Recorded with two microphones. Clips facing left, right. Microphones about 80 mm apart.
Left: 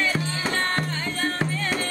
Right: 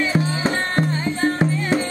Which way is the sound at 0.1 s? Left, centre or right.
Centre.